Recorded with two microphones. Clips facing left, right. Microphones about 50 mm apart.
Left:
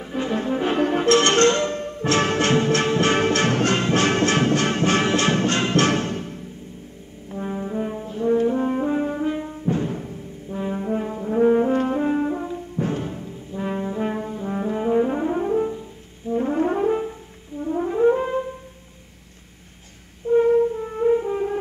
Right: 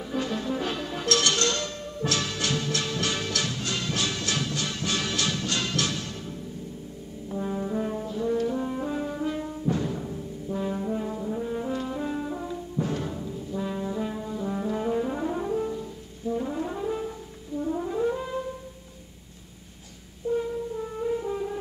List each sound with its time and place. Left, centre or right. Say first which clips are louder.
0.0 s brass instrument: left 5 dB; left
0.8 s music: left 9 dB; left
7.2 s brass instrument: left 2 dB; left
8.1 s brass instrument: left 8 dB; left
11.3 s brass instrument: left 17 dB; left; by 16.3 s centre
16.3 s brass instrument: left 11 dB; left
17.7 s french horn: left 11 dB; left
20.3 s brass instrument: left 15 dB; left
20.7 s french horn: left 9 dB; left